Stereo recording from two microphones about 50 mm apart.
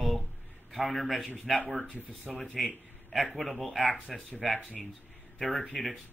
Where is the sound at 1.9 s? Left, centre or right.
Right.